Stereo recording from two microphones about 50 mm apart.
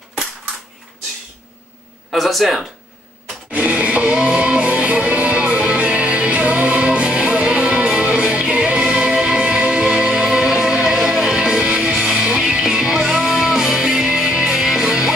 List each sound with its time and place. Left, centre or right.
2.0 s speech: centre
3.5 s music: right; by 15.1 s centre